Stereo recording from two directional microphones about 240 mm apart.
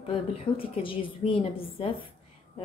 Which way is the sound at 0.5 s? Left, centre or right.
Left.